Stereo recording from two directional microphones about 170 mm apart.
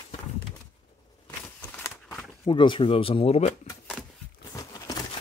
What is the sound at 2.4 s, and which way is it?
Speech, 30° left (ahead or behind).